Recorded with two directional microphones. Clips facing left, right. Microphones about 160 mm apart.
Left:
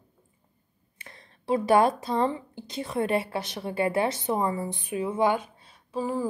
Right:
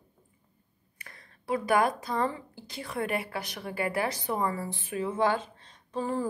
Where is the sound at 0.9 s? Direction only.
25° left (ahead or behind).